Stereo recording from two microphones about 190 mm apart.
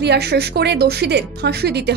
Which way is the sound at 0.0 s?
60° right (ahead or behind).